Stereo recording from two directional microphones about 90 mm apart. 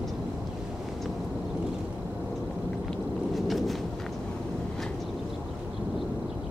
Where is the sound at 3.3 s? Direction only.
Centre (ahead or behind).